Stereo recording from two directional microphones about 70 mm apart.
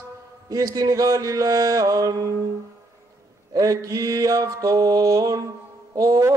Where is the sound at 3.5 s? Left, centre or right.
Right.